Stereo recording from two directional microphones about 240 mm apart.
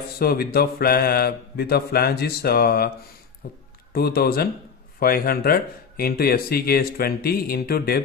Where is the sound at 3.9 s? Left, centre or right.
Left.